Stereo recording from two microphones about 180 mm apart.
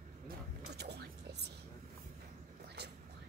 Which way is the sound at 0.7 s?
65° right (ahead or behind).